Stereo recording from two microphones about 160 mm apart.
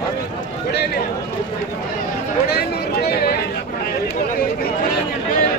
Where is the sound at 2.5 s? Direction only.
80° left.